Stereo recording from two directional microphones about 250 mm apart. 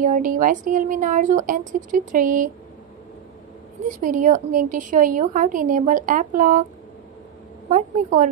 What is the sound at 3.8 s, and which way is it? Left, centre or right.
A woman's voice, right.